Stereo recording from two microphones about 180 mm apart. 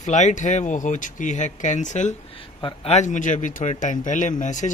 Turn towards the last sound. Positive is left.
turn(degrees=45)  # may be behind; listen again after turning